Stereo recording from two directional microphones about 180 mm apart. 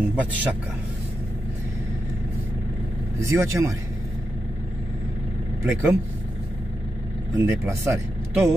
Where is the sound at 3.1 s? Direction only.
15° right (ahead or behind).